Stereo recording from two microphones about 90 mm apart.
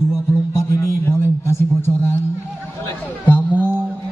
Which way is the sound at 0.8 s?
25° left (ahead or behind).